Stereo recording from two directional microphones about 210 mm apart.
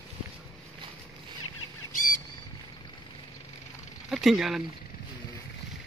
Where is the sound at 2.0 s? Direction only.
40° left (ahead or behind).